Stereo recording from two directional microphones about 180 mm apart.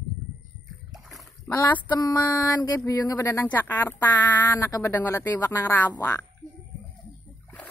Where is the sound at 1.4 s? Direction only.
20° left (ahead or behind).